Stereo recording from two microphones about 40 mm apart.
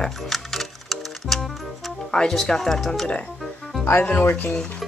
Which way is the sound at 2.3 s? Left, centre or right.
Centre.